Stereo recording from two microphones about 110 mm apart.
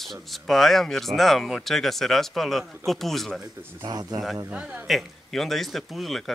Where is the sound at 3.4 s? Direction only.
35° right (ahead or behind).